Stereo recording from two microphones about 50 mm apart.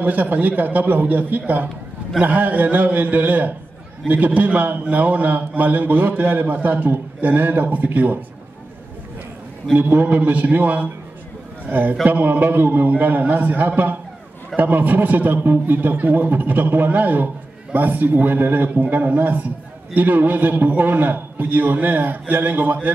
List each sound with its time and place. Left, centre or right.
0.0 s a man's voice: right
9.8 s a man's voice: right